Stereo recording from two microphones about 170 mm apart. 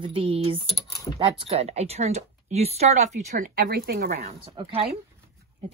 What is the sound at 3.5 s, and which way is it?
Speech, 60° right (ahead or behind).